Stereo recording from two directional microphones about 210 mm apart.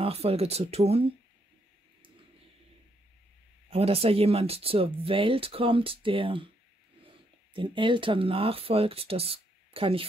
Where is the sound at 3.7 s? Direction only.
30° right (ahead or behind).